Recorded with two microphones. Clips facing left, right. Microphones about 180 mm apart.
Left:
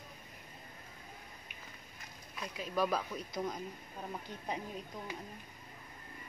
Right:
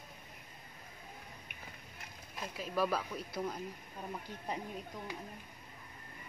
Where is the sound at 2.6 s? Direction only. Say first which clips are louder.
Even; 5° right (ahead or behind).